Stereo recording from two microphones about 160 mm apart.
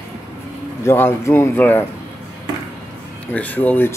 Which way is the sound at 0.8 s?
15° left (ahead or behind).